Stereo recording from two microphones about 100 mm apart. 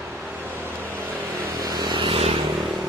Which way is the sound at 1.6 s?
45° right (ahead or behind).